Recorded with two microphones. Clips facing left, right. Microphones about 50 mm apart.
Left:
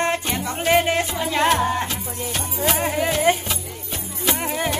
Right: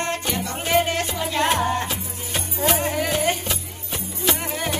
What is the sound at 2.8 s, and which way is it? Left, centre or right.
Music, centre.